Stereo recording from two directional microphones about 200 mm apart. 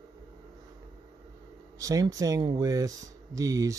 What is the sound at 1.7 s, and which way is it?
Speech, 15° right (ahead or behind).